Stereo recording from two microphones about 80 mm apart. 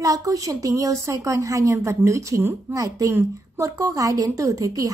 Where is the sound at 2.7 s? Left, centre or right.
Right.